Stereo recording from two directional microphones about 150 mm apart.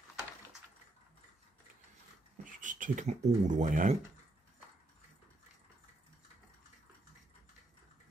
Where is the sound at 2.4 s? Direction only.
60° right (ahead or behind).